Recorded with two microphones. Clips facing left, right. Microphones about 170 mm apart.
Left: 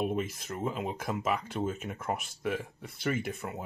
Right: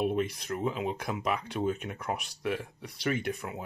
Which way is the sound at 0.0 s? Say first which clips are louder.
Right 2 dB; centre (ahead or behind).